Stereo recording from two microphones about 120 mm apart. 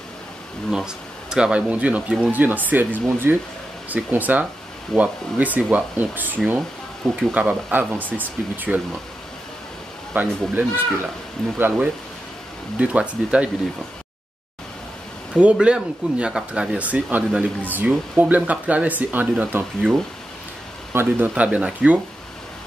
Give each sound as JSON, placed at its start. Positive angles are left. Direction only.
{"t": 0.7, "sound": "speech", "side_deg": -5}
{"t": 10.1, "sound": "speech", "side_deg": -15}
{"t": 11.5, "sound": "speech", "side_deg": -15}
{"t": 15.3, "sound": "speech", "side_deg": -10}